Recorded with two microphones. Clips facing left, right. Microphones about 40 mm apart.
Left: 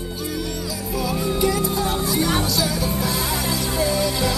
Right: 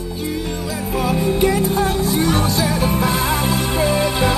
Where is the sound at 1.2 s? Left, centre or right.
Right.